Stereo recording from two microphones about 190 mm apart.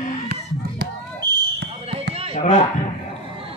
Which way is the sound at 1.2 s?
25° right (ahead or behind).